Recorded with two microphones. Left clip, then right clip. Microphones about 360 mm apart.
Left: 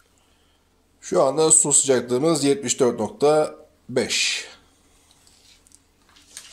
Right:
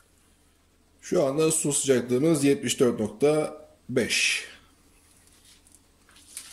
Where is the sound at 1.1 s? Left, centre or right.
Left.